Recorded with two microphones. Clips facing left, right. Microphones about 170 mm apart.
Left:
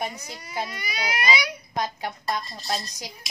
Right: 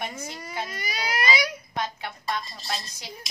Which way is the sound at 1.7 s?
40° left (ahead or behind).